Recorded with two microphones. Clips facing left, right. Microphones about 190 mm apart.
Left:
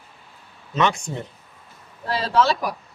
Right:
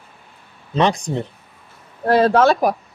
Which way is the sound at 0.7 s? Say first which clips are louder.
Right 4 dB; 35° right (ahead or behind).